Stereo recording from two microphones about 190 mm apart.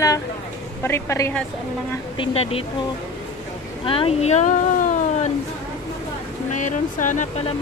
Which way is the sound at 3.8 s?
30° left (ahead or behind).